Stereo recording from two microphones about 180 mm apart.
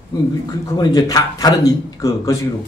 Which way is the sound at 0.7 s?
20° left (ahead or behind).